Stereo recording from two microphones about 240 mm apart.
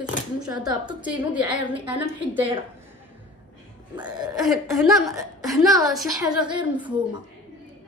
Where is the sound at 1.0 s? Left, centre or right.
Centre.